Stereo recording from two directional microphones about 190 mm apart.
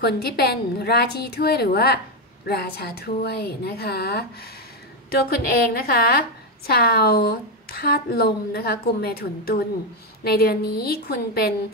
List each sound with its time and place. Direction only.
0.0 s a woman's voice: 55° left (ahead or behind)